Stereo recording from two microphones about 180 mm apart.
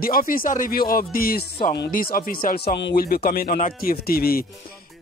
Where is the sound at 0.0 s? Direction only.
55° left (ahead or behind).